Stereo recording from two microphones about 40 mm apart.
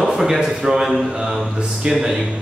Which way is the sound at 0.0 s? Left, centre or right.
Centre.